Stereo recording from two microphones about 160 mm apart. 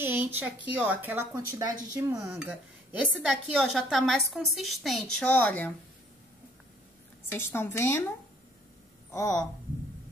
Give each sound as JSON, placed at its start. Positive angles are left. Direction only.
{"t": 0.0, "sound": "speech", "side_deg": -15}
{"t": 2.9, "sound": "a woman's voice", "side_deg": -5}
{"t": 7.2, "sound": "a woman's voice", "side_deg": 15}
{"t": 9.1, "sound": "speech", "side_deg": 20}